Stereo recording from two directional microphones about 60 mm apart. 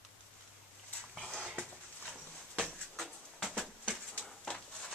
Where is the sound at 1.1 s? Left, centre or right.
Centre.